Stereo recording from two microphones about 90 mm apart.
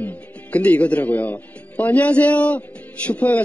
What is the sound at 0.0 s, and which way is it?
A man's voice, 15° left (ahead or behind).